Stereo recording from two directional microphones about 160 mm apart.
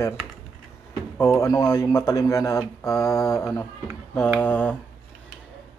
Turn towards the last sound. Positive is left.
turn(degrees=10)  # may be behind; listen again after turning